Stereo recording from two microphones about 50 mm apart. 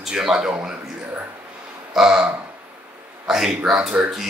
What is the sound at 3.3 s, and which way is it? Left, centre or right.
Speech, centre.